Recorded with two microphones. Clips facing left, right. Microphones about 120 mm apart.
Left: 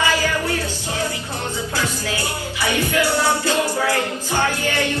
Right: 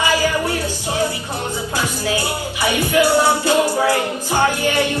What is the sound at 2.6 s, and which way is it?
Music, 15° right (ahead or behind).